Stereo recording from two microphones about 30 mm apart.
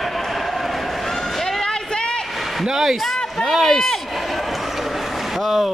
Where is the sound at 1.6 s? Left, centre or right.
Left.